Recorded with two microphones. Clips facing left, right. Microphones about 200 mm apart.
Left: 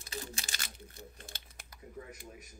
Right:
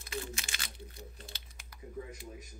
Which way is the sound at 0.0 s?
35° left (ahead or behind).